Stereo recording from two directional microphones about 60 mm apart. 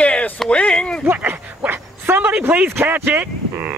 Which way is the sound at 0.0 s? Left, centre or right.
Left.